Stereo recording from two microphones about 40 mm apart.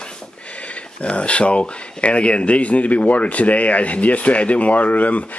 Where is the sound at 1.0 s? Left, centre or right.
Left.